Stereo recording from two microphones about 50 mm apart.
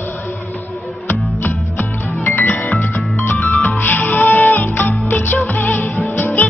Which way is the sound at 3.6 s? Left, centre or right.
Left.